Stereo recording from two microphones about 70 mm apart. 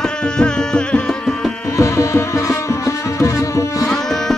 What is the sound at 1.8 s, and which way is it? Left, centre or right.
Music, left.